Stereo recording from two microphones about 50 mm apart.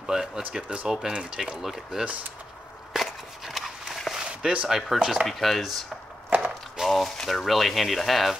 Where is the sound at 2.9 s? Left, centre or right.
Centre.